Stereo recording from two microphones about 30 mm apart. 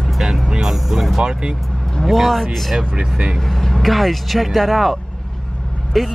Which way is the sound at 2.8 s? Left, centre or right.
Right.